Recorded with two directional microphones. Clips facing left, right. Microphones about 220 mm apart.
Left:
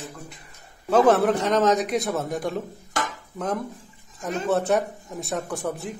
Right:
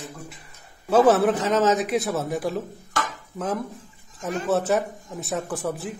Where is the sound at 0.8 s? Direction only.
5° right (ahead or behind).